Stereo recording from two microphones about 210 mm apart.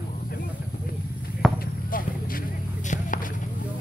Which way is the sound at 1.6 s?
40° left (ahead or behind).